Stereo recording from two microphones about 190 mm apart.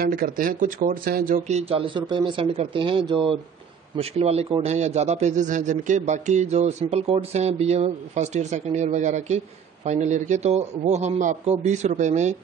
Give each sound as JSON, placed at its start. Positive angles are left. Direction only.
{"t": 0.0, "sound": "a man's voice", "side_deg": -50}